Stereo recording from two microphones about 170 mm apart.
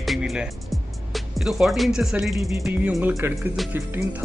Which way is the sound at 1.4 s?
Centre (ahead or behind).